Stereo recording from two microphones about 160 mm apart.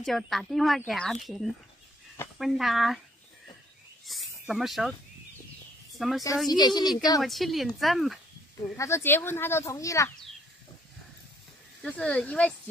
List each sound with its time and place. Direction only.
0.0 s speech: centre (ahead or behind)
4.0 s speech: centre (ahead or behind)
5.9 s a woman's voice: centre (ahead or behind)
6.6 s a woman's voice: 25° left (ahead or behind)
7.2 s speech: centre (ahead or behind)
8.7 s speech: 15° left (ahead or behind)
11.8 s speech: 10° left (ahead or behind)